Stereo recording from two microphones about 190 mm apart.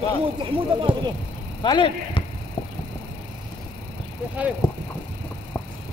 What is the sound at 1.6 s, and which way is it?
Speech, 25° left (ahead or behind).